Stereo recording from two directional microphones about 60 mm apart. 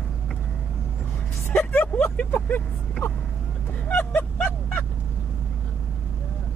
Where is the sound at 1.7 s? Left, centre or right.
Left.